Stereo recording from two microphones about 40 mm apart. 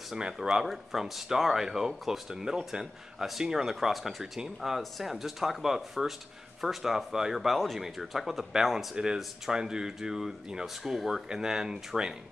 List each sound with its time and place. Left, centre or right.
0.5 s speech: centre
8.9 s speech: centre
10.8 s speech: centre
11.2 s speech: centre